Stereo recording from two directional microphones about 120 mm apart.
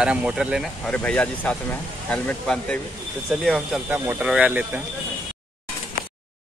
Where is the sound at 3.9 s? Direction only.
15° right (ahead or behind).